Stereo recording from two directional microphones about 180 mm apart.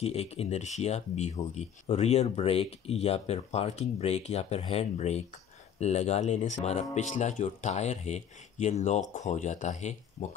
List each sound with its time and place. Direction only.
0.0 s speech: 35° left (ahead or behind)